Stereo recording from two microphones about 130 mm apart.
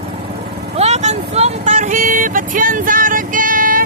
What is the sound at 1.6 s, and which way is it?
Music, 80° right.